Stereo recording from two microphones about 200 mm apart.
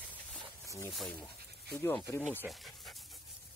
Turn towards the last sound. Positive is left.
turn(degrees=0)  # may be behind; listen again after turning